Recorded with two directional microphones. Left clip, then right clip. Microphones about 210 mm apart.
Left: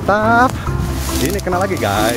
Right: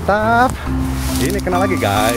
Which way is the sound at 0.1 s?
5° left (ahead or behind).